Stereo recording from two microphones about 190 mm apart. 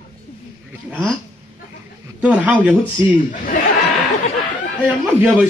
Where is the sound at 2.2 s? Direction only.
5° right (ahead or behind).